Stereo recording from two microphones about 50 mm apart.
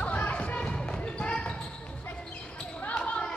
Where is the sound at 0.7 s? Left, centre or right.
Centre.